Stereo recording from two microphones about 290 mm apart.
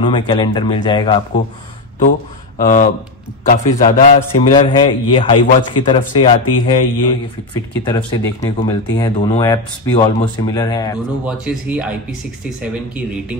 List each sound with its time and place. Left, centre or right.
0.0 s speech: centre
2.0 s a man's voice: left
11.2 s speech: centre